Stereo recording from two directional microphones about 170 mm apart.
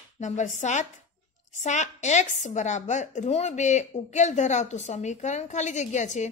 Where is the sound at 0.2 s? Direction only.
45° left (ahead or behind).